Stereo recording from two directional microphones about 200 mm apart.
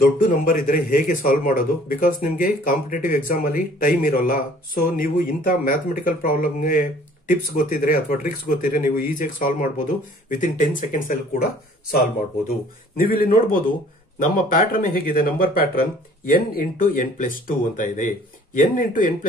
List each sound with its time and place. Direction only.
0.0 s a man's voice: 45° left (ahead or behind)
12.4 s a man's voice: 45° left (ahead or behind)